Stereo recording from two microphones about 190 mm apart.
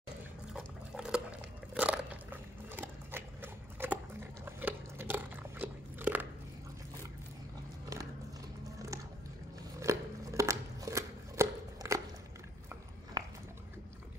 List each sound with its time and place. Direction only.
0.5 s dog: 5° right (ahead or behind)
1.7 s biting: 5° right (ahead or behind)
2.7 s sewing machine: 10° right (ahead or behind)
3.8 s dog: 10° right (ahead or behind)
4.5 s biting: 10° right (ahead or behind)
8.7 s biting: 15° right (ahead or behind)
9.8 s scissors: 15° right (ahead or behind)
13.2 s dog: 20° right (ahead or behind)